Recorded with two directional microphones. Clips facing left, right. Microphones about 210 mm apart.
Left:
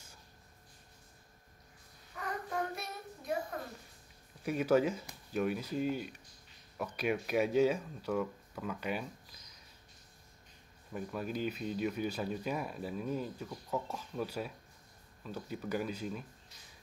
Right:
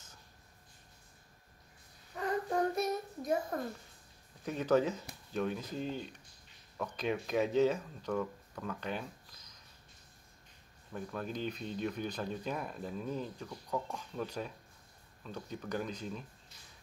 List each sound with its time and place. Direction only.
2.1 s child singing: 30° right (ahead or behind)
4.4 s speech: 10° left (ahead or behind)
10.9 s speech: 10° left (ahead or behind)